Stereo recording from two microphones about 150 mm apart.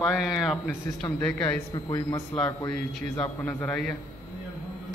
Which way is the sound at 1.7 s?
25° left (ahead or behind).